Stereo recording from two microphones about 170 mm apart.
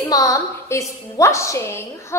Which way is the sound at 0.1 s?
20° left (ahead or behind).